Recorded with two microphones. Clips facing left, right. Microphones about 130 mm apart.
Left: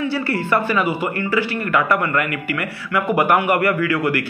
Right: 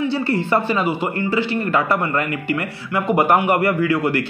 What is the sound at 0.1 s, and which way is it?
A man's voice, 25° right (ahead or behind).